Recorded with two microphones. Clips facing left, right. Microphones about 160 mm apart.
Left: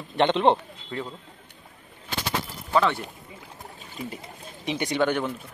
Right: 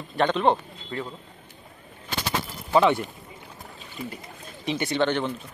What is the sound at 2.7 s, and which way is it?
Speech, 15° right (ahead or behind).